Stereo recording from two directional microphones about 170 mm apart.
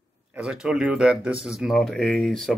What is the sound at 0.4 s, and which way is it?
Speech, 5° right (ahead or behind).